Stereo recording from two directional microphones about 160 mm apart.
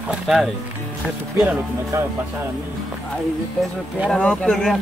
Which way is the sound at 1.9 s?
15° right (ahead or behind).